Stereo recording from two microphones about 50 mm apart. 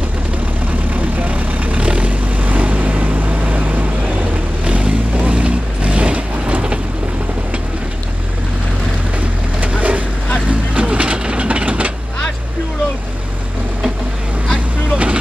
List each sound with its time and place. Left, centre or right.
1.2 s vehicle: right
4.6 s vehicle: right
9.8 s vehicle: right
14.9 s boat: right